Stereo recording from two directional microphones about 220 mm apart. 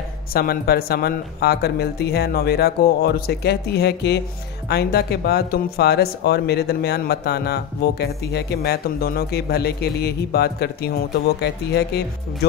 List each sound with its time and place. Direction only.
0.3 s speech: 45° left (ahead or behind)